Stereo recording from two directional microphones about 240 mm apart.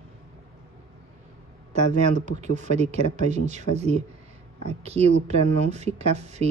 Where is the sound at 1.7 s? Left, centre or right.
Right.